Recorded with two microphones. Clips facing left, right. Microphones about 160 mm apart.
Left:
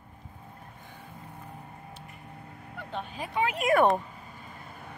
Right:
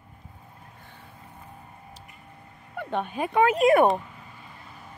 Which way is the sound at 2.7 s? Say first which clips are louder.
Right 8 dB; 60° right (ahead or behind).